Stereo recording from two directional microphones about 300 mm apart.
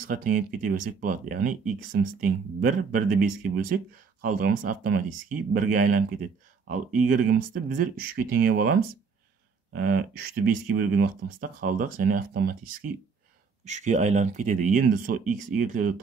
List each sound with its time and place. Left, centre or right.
0.0 s speech: right
7.1 s speech: right
9.7 s a sound: right
10.7 s speech: right